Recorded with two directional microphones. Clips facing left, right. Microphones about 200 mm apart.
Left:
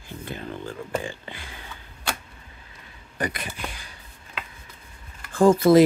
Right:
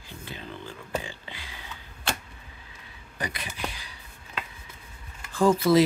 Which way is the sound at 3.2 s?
50° left (ahead or behind).